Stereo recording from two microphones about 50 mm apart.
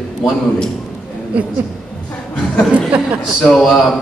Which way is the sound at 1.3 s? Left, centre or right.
Right.